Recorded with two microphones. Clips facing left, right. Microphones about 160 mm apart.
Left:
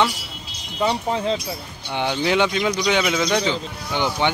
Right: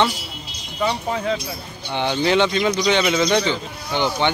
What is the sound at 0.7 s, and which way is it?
Speech, 25° left (ahead or behind).